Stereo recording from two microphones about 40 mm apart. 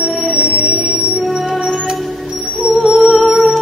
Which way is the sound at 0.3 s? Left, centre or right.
Right.